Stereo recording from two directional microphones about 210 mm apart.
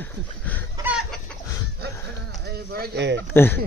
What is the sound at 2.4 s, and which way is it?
Speech, 45° right (ahead or behind).